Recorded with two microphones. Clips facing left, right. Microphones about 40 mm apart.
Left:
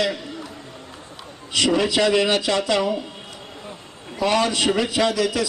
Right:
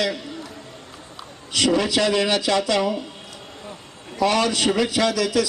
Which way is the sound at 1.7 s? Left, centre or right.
Centre.